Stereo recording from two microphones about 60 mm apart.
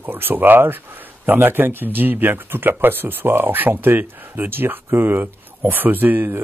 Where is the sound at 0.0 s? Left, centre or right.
Right.